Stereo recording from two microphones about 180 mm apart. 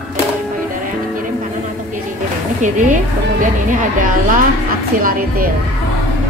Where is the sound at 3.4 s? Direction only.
45° right (ahead or behind).